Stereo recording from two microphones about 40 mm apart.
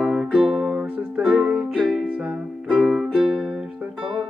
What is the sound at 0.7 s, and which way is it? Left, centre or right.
Music, right.